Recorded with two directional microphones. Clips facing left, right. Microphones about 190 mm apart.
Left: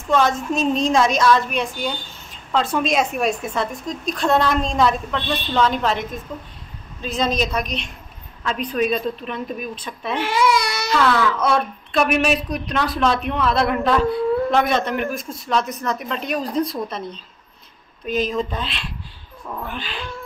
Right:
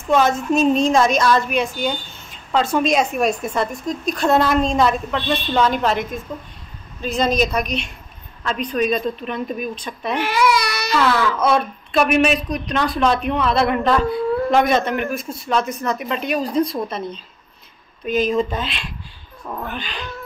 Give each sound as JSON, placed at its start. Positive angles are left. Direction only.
{"t": 0.1, "sound": "a woman's voice", "side_deg": -5}
{"t": 10.3, "sound": "speech", "side_deg": 25}
{"t": 10.9, "sound": "a woman's voice", "side_deg": 0}